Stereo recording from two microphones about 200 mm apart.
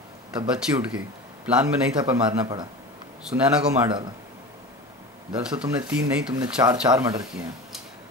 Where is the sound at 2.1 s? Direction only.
20° right (ahead or behind).